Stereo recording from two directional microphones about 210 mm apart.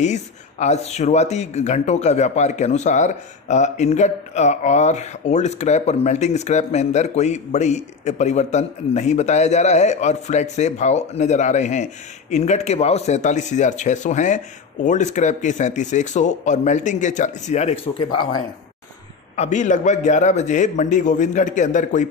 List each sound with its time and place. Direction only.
0.0 s speech: 35° left (ahead or behind)
19.3 s speech: 35° left (ahead or behind)